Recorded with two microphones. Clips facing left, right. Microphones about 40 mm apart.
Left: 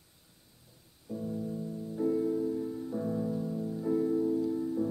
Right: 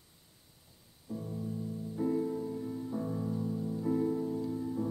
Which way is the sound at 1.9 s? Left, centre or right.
Centre.